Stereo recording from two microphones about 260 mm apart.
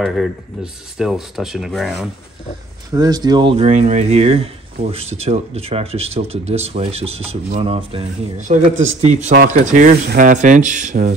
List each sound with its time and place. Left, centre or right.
0.0 s speech: centre
2.9 s speech: centre